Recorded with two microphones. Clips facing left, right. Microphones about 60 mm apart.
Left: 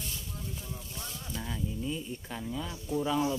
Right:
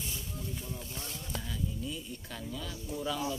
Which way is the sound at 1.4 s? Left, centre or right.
Left.